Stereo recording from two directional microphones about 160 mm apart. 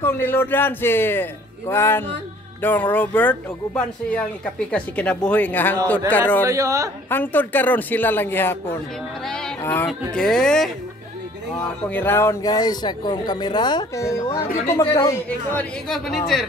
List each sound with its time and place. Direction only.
0.0 s speech: 10° left (ahead or behind)
6.4 s speech: 20° right (ahead or behind)
7.1 s speech: 10° left (ahead or behind)
9.2 s a sound: 5° left (ahead or behind)
9.6 s speech: 15° left (ahead or behind)
11.9 s speech: 15° left (ahead or behind)